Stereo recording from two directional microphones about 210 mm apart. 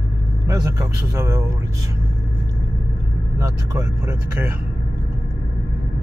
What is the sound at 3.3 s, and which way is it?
Speech, 15° right (ahead or behind).